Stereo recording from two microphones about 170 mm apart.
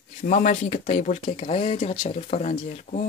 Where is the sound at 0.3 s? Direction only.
50° left (ahead or behind).